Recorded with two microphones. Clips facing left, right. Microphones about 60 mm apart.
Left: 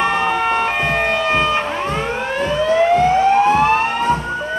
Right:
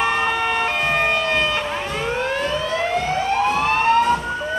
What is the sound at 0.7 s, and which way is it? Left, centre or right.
Siren, centre.